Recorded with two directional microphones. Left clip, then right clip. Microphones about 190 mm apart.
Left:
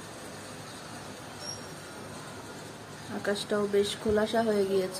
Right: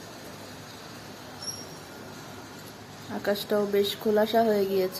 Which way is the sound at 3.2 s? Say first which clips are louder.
Right 3 dB; 30° right (ahead or behind).